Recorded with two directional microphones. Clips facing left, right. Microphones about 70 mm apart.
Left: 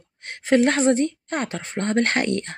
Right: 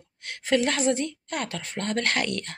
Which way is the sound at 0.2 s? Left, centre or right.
Left.